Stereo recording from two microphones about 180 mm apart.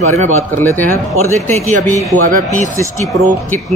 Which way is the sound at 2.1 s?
45° right (ahead or behind).